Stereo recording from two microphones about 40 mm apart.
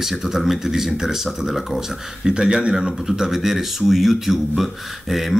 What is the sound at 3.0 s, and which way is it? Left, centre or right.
Speech, centre.